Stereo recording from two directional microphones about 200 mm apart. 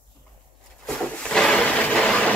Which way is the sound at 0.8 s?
5° left (ahead or behind).